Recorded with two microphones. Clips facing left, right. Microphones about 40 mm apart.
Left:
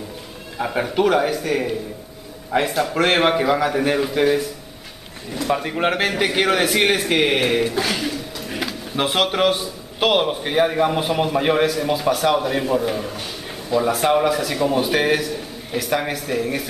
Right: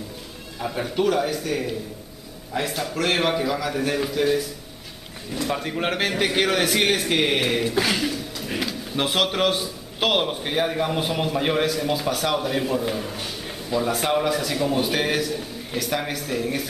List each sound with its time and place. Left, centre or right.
0.6 s a man's voice: left
5.3 s speech: centre
7.7 s a sound: centre
8.5 s speech: centre